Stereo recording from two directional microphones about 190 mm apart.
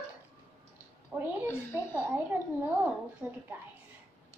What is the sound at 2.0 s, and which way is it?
A woman's voice, 10° right (ahead or behind).